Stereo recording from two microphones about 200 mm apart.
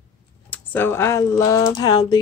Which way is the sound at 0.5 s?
10° left (ahead or behind).